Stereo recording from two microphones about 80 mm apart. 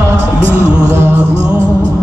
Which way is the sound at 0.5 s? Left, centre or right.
Left.